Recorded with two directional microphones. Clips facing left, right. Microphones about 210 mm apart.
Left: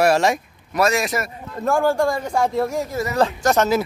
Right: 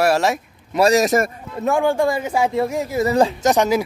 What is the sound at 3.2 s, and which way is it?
Speech, 15° right (ahead or behind).